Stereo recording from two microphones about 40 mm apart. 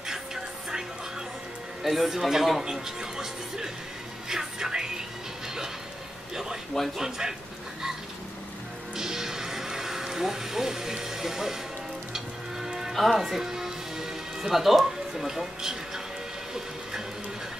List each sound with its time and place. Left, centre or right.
0.1 s music: centre
1.8 s speech: centre
7.0 s speech: centre
8.9 s cattle: centre
12.1 s music: centre
12.9 s speech: centre